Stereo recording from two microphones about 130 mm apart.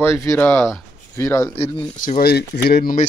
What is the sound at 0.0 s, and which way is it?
Speech, 20° left (ahead or behind).